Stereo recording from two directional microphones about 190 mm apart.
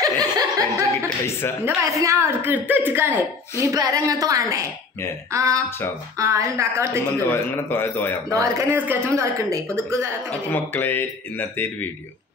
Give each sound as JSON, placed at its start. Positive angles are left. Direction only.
{"t": 0.0, "sound": "chuckle", "side_deg": -20}
{"t": 1.0, "sound": "speech", "side_deg": 15}
{"t": 1.6, "sound": "speech", "side_deg": -15}
{"t": 7.2, "sound": "speech", "side_deg": 10}
{"t": 8.3, "sound": "speech", "side_deg": -15}
{"t": 10.5, "sound": "speech", "side_deg": 10}